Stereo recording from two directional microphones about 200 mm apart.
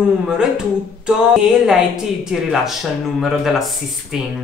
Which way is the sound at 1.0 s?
5° right (ahead or behind).